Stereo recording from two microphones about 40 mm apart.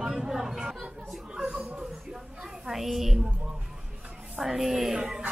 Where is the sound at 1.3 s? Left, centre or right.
Right.